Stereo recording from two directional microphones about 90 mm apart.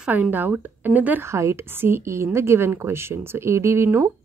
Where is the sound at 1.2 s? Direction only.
30° right (ahead or behind).